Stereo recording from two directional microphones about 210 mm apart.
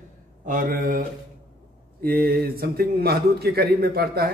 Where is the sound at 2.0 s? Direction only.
45° right (ahead or behind).